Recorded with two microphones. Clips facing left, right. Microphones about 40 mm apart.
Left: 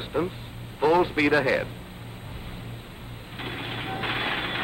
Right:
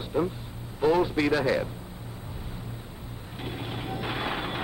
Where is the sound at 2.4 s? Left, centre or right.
Left.